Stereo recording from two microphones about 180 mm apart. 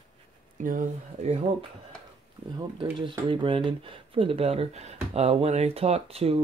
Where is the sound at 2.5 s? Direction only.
25° right (ahead or behind).